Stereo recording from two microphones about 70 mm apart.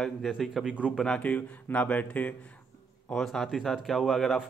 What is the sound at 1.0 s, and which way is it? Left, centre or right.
Speech, centre.